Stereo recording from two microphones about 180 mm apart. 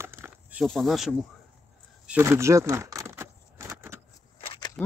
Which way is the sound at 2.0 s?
10° right (ahead or behind).